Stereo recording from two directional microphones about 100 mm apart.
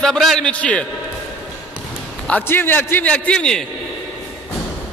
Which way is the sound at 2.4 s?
20° left (ahead or behind).